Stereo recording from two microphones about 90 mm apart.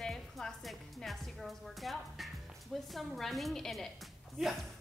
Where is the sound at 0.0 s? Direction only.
5° left (ahead or behind).